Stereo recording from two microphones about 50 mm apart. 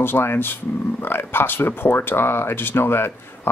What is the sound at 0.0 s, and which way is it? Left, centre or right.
Speech, left.